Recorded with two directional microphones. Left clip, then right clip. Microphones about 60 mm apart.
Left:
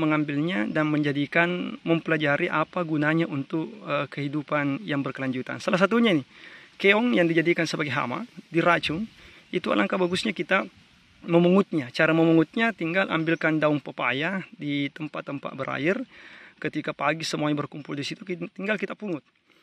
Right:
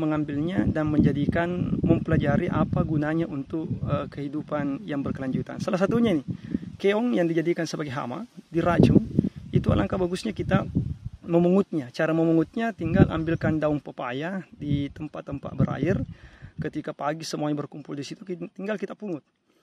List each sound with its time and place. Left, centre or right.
0.3 s a man's voice: centre
5.8 s a man's voice: centre
12.2 s a man's voice: centre